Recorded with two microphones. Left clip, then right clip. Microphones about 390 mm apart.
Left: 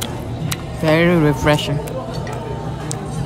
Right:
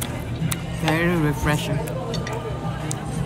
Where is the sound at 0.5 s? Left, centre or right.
Centre.